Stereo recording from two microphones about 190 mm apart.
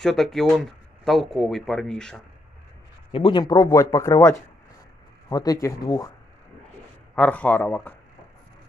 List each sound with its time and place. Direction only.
0.0 s speech: centre (ahead or behind)
3.1 s speech: 30° left (ahead or behind)
7.2 s speech: 10° left (ahead or behind)